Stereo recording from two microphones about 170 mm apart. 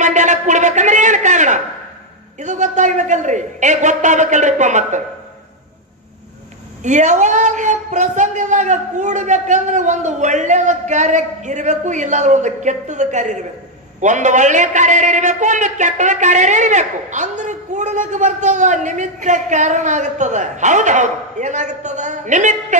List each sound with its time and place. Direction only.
0.0 s a sound: 45° right (ahead or behind)
2.4 s a man's voice: 45° right (ahead or behind)
6.8 s a man's voice: 45° right (ahead or behind)